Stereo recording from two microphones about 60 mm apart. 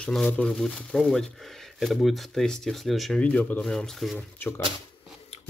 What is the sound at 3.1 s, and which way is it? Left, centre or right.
Speech, left.